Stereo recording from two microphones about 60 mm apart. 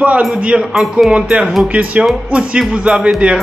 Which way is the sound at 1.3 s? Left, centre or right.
Centre.